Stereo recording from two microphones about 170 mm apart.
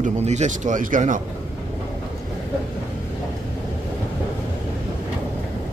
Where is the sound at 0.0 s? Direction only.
40° right (ahead or behind).